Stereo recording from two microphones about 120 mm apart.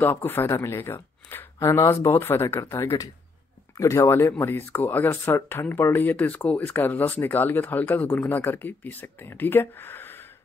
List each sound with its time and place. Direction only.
0.0 s speech: 20° left (ahead or behind)